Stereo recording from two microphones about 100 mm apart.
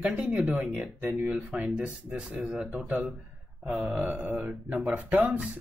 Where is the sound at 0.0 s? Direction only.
15° right (ahead or behind).